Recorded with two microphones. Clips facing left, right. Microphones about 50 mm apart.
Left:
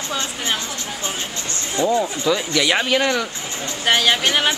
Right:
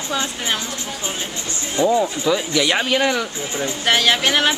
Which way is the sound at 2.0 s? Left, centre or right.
Centre.